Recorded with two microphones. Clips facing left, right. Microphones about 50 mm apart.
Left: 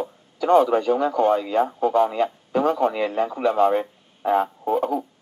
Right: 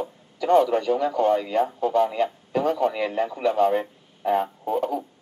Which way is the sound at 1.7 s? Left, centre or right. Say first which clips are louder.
Left 2 dB; left.